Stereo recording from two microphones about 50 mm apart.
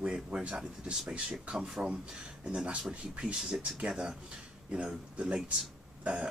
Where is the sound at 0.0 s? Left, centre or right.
Right.